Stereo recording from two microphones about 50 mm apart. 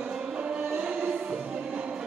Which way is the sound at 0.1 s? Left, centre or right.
Centre.